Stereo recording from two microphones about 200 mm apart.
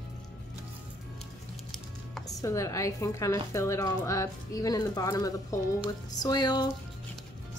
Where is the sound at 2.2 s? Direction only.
15° left (ahead or behind).